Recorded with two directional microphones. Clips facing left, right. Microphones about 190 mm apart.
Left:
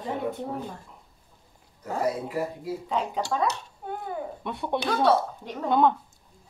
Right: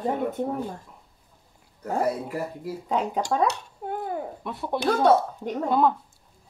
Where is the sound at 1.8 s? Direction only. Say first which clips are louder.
Right 2 dB; 55° right (ahead or behind).